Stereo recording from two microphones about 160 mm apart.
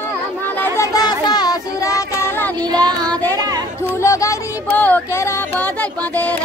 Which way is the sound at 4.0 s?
20° left (ahead or behind).